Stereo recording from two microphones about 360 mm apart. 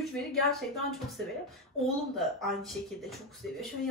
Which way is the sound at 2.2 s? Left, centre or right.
Centre.